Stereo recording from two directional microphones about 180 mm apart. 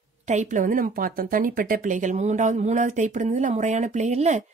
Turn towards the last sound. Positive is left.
turn(degrees=-40)  # may be behind; listen again after turning